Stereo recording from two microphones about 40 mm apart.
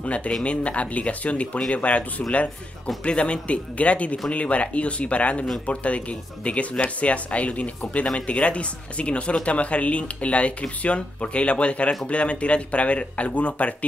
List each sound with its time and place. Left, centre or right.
0.0 s speech: left